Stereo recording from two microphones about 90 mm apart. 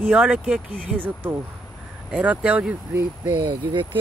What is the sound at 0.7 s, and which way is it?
Speech, 20° right (ahead or behind).